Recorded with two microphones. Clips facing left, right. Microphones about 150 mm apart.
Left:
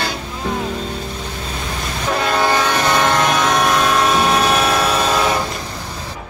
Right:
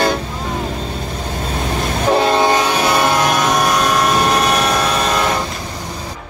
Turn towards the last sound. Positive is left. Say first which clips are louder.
# even
turn(degrees=0)  # may be behind; listen again after turning